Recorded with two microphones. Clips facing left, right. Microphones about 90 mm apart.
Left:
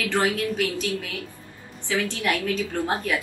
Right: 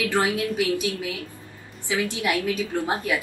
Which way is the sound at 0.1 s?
20° right (ahead or behind).